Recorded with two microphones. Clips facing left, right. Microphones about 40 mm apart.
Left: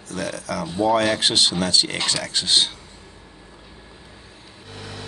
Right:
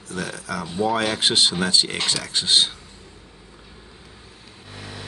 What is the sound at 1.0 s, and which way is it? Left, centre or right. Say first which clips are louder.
Speech: left 1 dB; centre.